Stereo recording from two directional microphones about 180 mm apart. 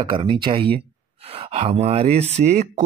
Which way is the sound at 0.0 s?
30° right (ahead or behind).